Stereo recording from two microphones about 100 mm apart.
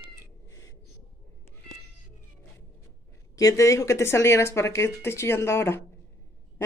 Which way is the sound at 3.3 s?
35° left (ahead or behind).